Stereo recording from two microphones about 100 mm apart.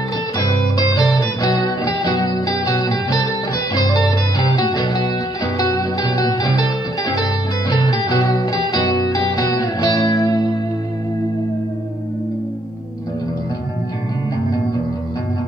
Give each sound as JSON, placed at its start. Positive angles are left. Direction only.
{"t": 0.5, "sound": "music", "side_deg": 45}